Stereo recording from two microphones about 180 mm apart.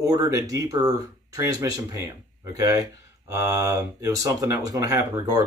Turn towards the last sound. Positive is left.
turn(degrees=-20)  # may be behind; listen again after turning